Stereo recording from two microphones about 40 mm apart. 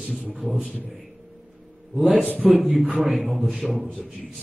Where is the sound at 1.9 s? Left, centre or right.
Centre.